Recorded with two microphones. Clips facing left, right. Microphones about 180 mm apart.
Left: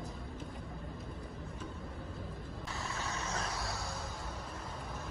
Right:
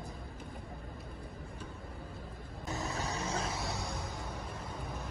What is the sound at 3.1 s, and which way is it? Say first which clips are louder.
Vehicle: right 1 dB; 35° right (ahead or behind).